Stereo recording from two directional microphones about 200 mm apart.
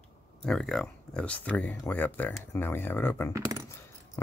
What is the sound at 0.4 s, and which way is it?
Speech, centre (ahead or behind).